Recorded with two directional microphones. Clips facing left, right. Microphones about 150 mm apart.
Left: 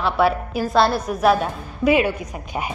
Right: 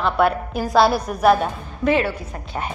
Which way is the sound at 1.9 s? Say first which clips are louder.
Left 2 dB; 15° left (ahead or behind).